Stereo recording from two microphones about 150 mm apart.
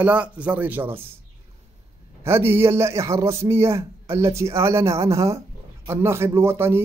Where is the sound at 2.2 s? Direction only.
15° right (ahead or behind).